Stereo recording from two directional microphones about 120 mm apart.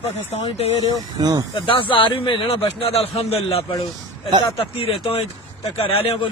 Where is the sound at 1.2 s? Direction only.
35° right (ahead or behind).